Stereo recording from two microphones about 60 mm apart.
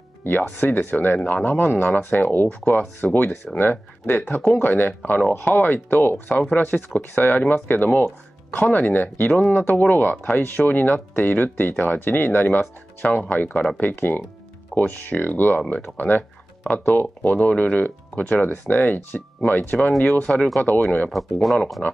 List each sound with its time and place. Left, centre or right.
0.2 s speech: left
21.1 s speech: centre